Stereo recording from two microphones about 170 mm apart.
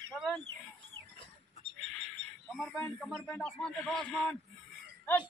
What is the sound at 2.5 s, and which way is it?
Speech, centre (ahead or behind).